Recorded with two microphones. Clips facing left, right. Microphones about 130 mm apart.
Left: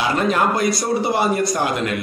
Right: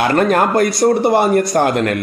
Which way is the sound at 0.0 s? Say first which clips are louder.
Right 5 dB; 55° right (ahead or behind).